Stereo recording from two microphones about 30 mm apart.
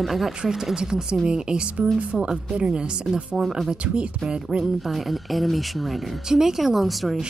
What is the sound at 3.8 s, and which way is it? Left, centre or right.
Speech, right.